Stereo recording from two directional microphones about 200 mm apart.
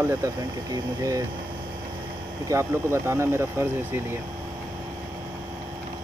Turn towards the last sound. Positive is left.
turn(degrees=-10)  # may be behind; listen again after turning